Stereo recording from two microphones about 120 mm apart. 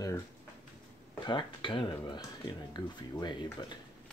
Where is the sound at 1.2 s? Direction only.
45° left (ahead or behind).